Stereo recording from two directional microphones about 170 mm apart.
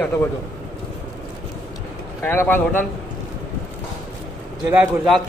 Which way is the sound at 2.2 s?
15° left (ahead or behind).